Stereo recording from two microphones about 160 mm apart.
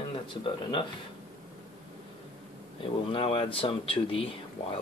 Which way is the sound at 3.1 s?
35° left (ahead or behind).